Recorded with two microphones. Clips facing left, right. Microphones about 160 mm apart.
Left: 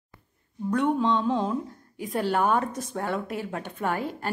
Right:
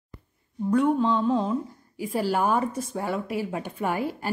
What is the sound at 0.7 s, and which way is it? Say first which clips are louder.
A woman's voice: right 2 dB; centre (ahead or behind).